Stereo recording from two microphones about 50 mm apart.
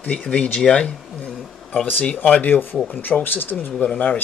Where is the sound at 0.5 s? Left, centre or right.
Centre.